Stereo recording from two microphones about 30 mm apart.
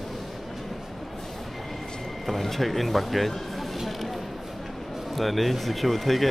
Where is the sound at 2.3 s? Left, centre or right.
Centre.